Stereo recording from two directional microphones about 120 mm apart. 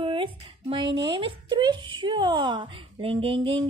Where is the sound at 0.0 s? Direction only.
45° right (ahead or behind).